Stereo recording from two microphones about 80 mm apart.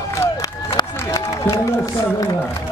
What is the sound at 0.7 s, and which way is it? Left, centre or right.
Run, left.